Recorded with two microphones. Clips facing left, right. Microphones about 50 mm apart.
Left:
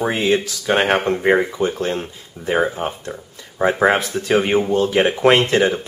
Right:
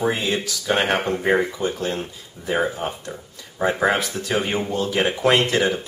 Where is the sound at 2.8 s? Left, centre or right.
Left.